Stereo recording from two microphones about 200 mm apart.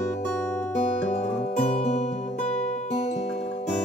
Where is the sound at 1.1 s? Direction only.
35° left (ahead or behind).